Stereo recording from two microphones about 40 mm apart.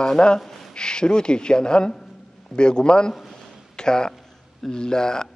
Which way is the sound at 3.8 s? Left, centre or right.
Centre.